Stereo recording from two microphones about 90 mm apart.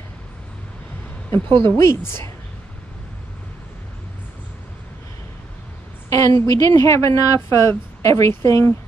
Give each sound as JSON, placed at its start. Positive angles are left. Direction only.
{"t": 1.6, "sound": "a woman's voice", "side_deg": 30}
{"t": 6.0, "sound": "a sound", "side_deg": 35}
{"t": 6.5, "sound": "a woman's voice", "side_deg": 35}